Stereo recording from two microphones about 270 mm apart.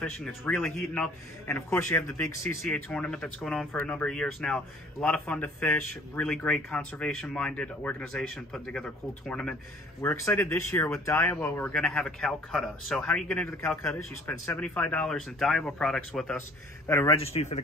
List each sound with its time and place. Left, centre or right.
0.0 s a man's voice: centre
17.2 s speech: left